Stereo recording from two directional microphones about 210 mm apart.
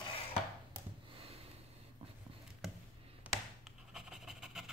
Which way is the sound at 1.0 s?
25° right (ahead or behind).